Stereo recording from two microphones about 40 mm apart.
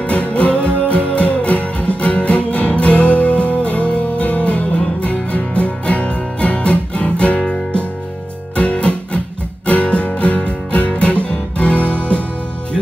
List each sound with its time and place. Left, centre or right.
0.0 s music: left
0.6 s music: right
0.8 s music: left